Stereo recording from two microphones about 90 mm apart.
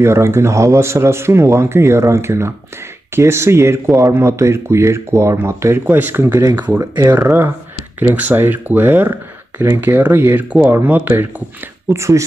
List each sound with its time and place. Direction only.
0.0 s speech: 30° right (ahead or behind)
6.8 s speech: 35° right (ahead or behind)
11.9 s speech: 35° right (ahead or behind)